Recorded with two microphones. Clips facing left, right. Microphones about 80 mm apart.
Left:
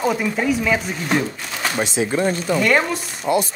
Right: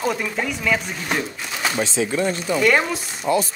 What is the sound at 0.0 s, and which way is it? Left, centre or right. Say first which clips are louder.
Speech: left 3 dB; centre.